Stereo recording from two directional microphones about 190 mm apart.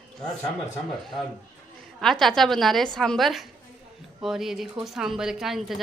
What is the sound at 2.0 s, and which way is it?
A woman's voice, centre (ahead or behind).